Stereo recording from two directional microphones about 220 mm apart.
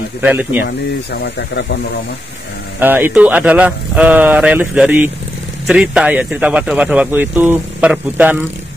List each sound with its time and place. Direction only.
0.2 s speech: 5° right (ahead or behind)
0.7 s speech: 50° left (ahead or behind)
2.8 s a man's voice: 10° right (ahead or behind)